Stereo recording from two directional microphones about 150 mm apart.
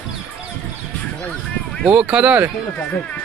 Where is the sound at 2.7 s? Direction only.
10° left (ahead or behind).